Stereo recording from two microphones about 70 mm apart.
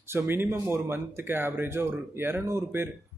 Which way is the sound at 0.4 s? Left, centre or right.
Right.